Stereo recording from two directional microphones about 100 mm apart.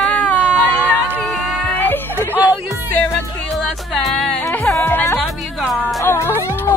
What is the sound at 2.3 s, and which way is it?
Music, 15° right (ahead or behind).